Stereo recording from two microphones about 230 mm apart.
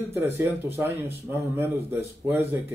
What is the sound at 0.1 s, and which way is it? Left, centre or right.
A man's voice, centre.